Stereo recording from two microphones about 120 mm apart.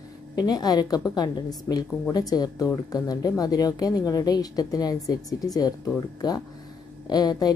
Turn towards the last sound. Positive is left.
turn(degrees=35)  # may be behind; listen again after turning